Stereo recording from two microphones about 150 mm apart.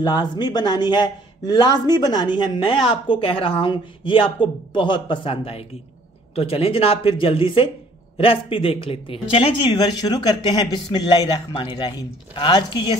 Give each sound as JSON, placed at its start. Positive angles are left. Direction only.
{"t": 0.0, "sound": "speech", "side_deg": 30}